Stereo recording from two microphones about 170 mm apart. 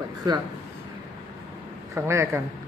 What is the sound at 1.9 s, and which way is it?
Speech, 15° right (ahead or behind).